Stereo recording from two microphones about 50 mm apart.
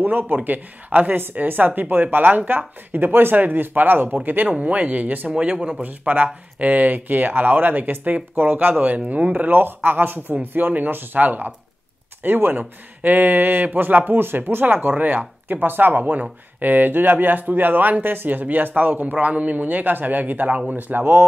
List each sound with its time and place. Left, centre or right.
0.0 s speech: right
5.4 s speech: right
5.8 s speech: right
20.7 s speech: right